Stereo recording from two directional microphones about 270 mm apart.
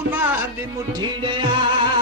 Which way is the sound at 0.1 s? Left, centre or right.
Centre.